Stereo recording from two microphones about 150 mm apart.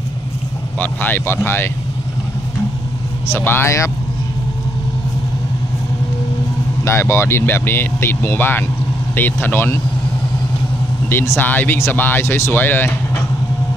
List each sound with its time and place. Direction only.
0.7 s speech: 15° left (ahead or behind)
3.3 s speech: 15° left (ahead or behind)
6.8 s speech: 15° left (ahead or behind)
11.1 s speech: 15° left (ahead or behind)